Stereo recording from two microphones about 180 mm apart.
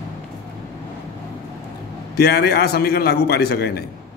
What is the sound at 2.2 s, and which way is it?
A man's voice, 60° left (ahead or behind).